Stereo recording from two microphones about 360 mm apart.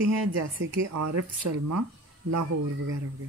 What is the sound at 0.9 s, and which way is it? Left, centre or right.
Speech, right.